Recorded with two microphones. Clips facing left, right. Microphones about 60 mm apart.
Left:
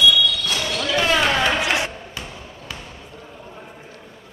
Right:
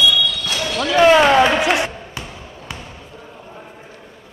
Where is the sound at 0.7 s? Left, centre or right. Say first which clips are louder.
Right 9 dB; right.